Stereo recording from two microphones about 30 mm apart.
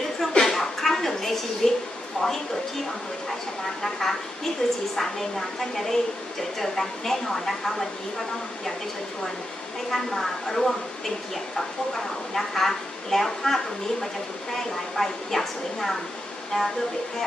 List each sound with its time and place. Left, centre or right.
0.4 s a sound: centre
2.2 s a woman's voice: centre
3.8 s a woman's voice: centre
9.8 s a woman's voice: centre
16.5 s speech: left